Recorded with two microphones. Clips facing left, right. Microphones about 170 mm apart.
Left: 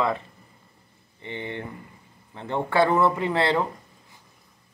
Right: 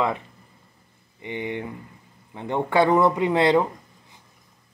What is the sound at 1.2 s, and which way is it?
Speech, 15° right (ahead or behind).